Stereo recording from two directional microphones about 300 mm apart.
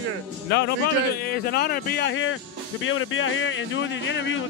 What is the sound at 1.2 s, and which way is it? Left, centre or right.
Speech, left.